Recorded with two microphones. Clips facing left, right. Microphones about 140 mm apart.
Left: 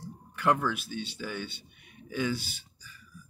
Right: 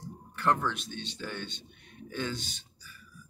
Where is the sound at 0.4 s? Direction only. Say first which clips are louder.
Left 2 dB; 10° left (ahead or behind).